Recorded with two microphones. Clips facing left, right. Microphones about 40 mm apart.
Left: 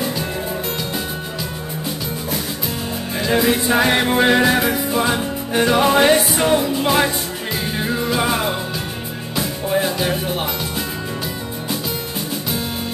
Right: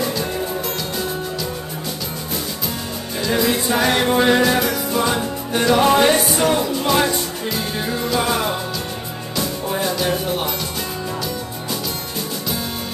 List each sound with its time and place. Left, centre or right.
3.2 s music: left